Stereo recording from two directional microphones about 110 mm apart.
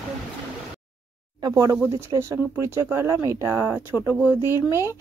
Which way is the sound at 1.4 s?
30° right (ahead or behind).